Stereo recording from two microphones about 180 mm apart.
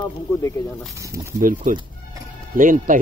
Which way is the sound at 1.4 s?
50° right (ahead or behind).